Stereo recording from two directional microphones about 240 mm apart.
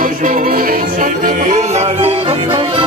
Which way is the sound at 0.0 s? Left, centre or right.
Right.